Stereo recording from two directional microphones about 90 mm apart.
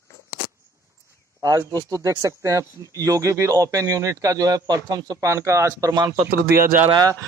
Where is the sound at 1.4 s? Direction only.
40° right (ahead or behind).